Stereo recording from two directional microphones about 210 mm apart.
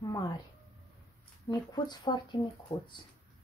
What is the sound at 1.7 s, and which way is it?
Speech, 20° left (ahead or behind).